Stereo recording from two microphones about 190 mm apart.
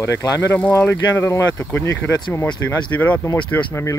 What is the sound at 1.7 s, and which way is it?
Speech, 80° left.